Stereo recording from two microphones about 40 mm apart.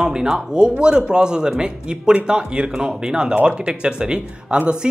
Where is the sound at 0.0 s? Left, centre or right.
Centre.